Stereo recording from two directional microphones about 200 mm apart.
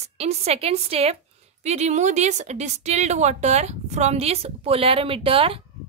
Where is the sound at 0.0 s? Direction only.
30° right (ahead or behind).